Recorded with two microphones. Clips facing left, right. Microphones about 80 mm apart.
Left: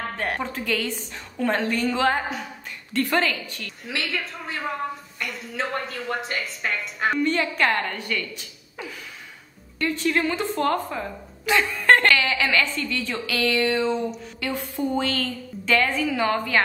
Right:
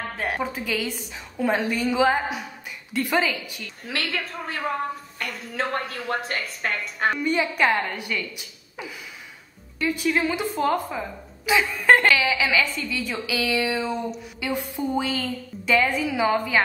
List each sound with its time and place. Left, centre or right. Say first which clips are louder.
0.2 s a woman's voice: right 2 dB; centre
5.6 s speech: right 1 dB; right
7.0 s a woman's voice: even; centre